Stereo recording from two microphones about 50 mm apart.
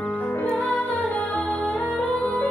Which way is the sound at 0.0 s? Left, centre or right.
Left.